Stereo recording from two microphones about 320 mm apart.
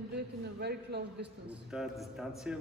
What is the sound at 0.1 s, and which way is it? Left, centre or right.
Speech, right.